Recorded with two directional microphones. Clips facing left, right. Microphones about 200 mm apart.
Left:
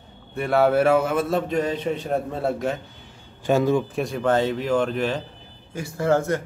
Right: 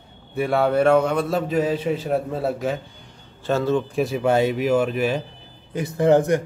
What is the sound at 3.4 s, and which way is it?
Speech, 15° left (ahead or behind).